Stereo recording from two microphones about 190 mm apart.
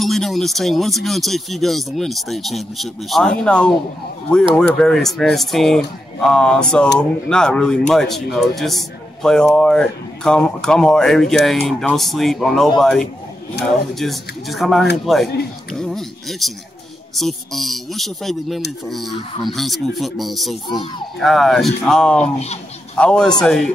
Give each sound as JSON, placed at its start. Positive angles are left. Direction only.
{"t": 0.0, "sound": "speech", "side_deg": 0}
{"t": 20.6, "sound": "speech", "side_deg": 25}
{"t": 21.2, "sound": "speech", "side_deg": 0}